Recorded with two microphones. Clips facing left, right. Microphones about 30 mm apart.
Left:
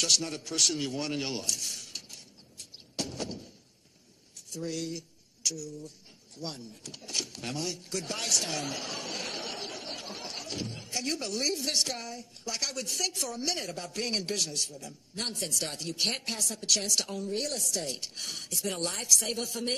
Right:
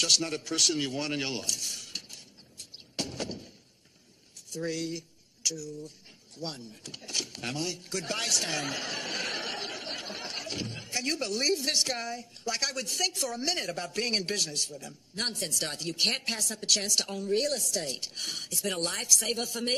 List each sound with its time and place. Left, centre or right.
0.0 s a man's voice: centre
1.7 s a sound: centre
3.0 s a man's voice: centre
4.7 s a man's voice: right
8.5 s a sound: right
11.8 s a man's voice: right